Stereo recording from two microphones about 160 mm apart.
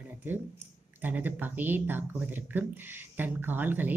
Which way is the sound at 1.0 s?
10° right (ahead or behind).